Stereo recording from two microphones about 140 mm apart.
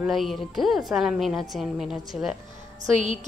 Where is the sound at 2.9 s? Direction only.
60° right (ahead or behind).